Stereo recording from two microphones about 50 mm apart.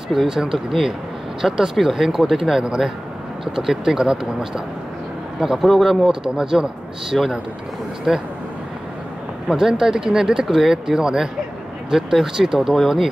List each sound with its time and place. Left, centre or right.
0.1 s speech: centre
2.6 s speech: centre
6.2 s speech: centre
9.5 s speech: centre